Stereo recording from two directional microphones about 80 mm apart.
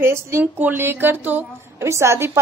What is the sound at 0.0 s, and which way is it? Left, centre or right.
A woman's voice, right.